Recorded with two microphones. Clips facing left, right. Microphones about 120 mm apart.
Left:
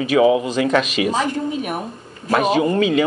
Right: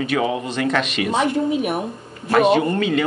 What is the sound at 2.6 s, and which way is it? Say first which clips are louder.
Speech: left 3 dB; 15° left (ahead or behind).